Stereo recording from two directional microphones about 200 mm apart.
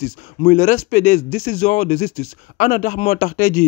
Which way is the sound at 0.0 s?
40° left (ahead or behind).